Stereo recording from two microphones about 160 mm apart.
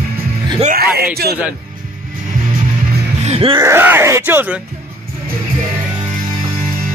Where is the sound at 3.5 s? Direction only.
15° right (ahead or behind).